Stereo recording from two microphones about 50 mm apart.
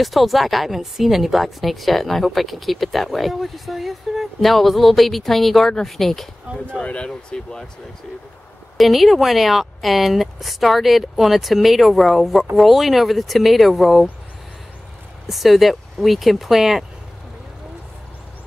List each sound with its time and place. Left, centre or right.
0.0 s speech: centre
6.5 s speech: centre
6.8 s speech: left
8.7 s speech: centre
15.2 s speech: centre